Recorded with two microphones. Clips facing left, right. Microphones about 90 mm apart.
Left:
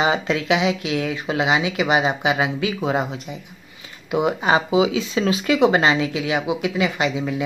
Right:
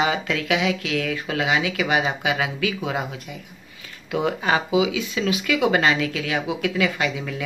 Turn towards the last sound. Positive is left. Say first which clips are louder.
# left 3 dB
turn(degrees=20)  # may be behind; listen again after turning